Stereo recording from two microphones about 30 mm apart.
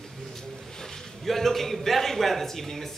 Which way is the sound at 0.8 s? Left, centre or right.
Centre.